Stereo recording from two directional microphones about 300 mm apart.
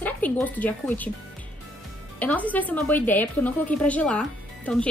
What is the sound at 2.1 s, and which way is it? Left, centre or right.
A woman's voice, centre.